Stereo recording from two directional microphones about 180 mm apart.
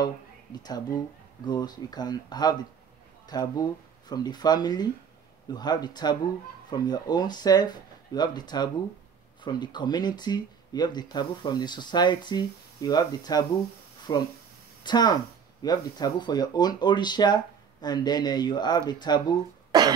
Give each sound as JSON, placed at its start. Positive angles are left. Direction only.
{"t": 0.0, "sound": "speech", "side_deg": 20}